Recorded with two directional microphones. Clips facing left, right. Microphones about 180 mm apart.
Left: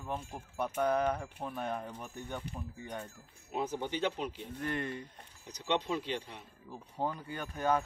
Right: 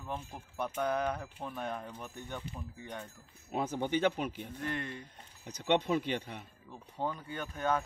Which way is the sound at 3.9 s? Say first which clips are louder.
Right 4 dB; 55° right (ahead or behind).